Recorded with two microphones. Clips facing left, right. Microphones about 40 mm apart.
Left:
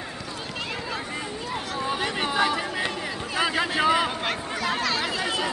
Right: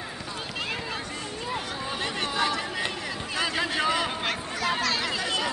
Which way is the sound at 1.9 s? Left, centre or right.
Centre.